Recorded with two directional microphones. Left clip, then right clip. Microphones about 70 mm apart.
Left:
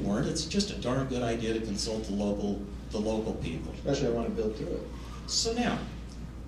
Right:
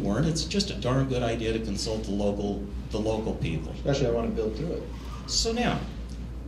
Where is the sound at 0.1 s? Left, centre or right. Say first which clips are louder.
Right 2 dB; left.